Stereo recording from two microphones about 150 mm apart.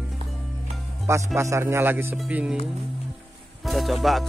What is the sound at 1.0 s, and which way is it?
A man's voice, 20° right (ahead or behind).